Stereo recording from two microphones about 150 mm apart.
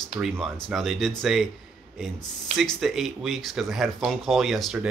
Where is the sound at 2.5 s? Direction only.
Centre (ahead or behind).